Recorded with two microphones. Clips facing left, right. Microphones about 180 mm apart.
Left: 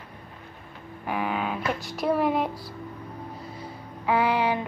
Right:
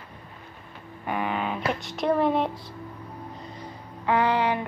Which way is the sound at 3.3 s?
5° left (ahead or behind).